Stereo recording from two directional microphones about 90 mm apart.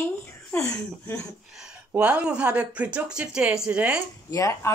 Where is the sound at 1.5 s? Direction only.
5° right (ahead or behind).